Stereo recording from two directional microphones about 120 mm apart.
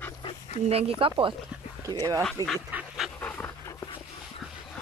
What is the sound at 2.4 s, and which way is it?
Speech, 30° right (ahead or behind).